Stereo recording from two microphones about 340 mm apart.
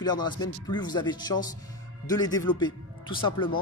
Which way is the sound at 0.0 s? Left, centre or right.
Centre.